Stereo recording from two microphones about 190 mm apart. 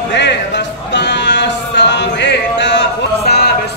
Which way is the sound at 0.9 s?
70° left (ahead or behind).